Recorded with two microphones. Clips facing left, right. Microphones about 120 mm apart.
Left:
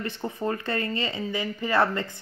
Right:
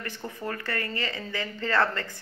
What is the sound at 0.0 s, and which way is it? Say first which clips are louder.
Speech: left 5 dB; 20° left (ahead or behind).